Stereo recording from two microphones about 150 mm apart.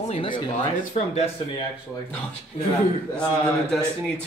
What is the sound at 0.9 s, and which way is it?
Speech, 50° left (ahead or behind).